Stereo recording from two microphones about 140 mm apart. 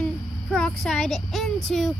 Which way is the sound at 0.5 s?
5° left (ahead or behind).